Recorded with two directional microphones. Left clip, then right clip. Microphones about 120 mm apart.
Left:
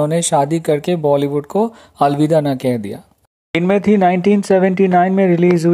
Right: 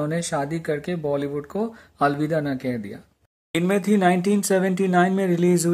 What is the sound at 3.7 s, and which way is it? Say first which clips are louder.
Speech: left 7 dB; 25° left (ahead or behind).